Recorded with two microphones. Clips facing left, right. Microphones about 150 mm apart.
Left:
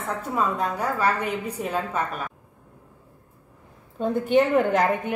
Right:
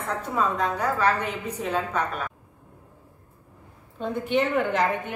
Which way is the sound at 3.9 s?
45° left (ahead or behind).